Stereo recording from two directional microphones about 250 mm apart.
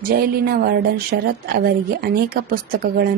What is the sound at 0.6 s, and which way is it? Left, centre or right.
Speech, right.